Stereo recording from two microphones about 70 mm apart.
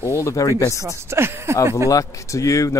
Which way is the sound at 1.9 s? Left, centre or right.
Left.